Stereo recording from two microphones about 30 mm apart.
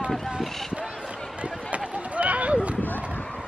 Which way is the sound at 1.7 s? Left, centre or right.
Right.